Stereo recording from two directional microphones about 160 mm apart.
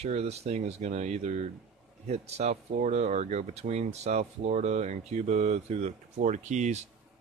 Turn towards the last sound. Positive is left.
turn(degrees=-45)  # may be behind; listen again after turning